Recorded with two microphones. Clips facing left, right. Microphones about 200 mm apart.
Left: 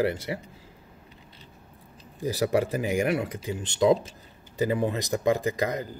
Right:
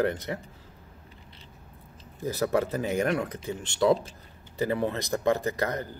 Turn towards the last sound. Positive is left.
turn(degrees=15)  # may be behind; listen again after turning